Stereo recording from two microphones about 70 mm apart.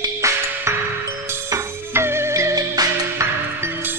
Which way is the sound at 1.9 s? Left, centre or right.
Right.